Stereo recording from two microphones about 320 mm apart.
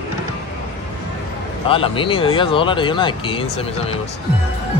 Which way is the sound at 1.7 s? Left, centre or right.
Centre.